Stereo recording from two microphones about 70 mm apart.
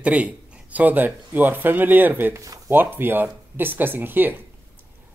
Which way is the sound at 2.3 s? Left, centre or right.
Right.